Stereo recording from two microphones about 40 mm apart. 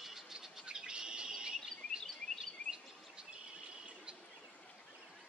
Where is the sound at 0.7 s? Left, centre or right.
Right.